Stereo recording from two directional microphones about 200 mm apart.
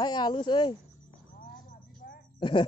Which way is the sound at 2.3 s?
25° left (ahead or behind).